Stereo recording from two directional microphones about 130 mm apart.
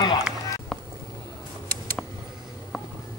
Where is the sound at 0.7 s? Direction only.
5° left (ahead or behind).